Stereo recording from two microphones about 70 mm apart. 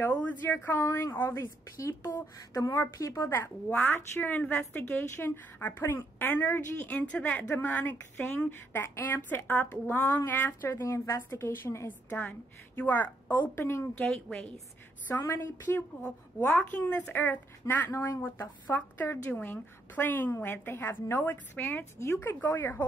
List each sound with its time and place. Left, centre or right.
0.0 s a woman's voice: left
0.8 s a woman's voice: left
1.1 s speech: left
2.6 s a woman's voice: left
3.6 s a woman's voice: left
7.4 s a woman's voice: left
10.8 s speech: left
12.1 s a woman's voice: left
14.0 s a woman's voice: centre
15.1 s speech: left
15.6 s a woman's voice: left
17.8 s a woman's voice: left